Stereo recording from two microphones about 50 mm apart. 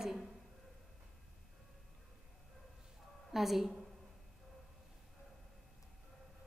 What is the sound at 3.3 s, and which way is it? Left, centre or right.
Speech, centre.